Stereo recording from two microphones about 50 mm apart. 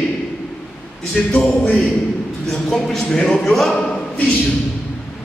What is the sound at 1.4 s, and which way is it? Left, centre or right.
Speech, left.